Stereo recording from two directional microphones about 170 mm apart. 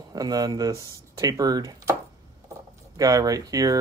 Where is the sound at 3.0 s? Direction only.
20° right (ahead or behind).